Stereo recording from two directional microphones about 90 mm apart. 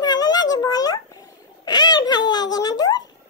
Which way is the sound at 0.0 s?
50° left (ahead or behind).